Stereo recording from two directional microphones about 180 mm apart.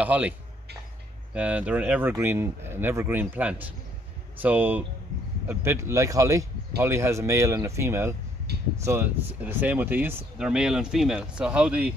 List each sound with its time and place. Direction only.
0.0 s speech: 10° right (ahead or behind)
1.3 s speech: 10° right (ahead or behind)